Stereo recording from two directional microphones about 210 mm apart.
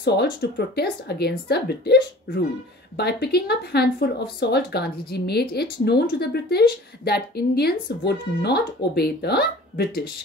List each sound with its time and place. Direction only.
0.0 s speech: 50° left (ahead or behind)